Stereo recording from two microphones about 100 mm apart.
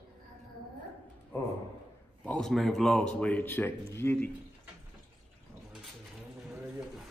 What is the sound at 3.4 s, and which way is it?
Speech, 20° left (ahead or behind).